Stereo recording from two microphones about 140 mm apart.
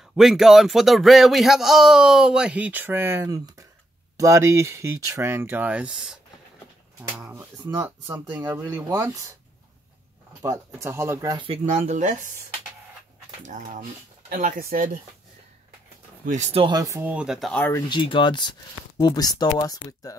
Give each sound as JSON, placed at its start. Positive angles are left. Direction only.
{"t": 0.1, "sound": "speech", "side_deg": 0}
{"t": 7.3, "sound": "speech", "side_deg": -25}
{"t": 10.4, "sound": "speech", "side_deg": -20}
{"t": 11.3, "sound": "speech", "side_deg": -40}
{"t": 11.6, "sound": "speech", "side_deg": -55}
{"t": 13.4, "sound": "speech", "side_deg": -65}
{"t": 16.3, "sound": "speech", "side_deg": -55}
{"t": 16.6, "sound": "speech", "side_deg": -25}
{"t": 17.1, "sound": "speech", "side_deg": -5}
{"t": 17.6, "sound": "speech", "side_deg": 15}
{"t": 17.8, "sound": "speech", "side_deg": 35}